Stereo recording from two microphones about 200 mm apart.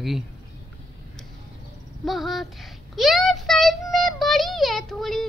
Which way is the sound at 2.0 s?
Centre (ahead or behind).